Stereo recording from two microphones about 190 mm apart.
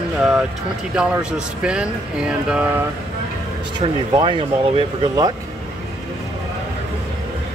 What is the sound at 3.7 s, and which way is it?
Speech, 25° right (ahead or behind).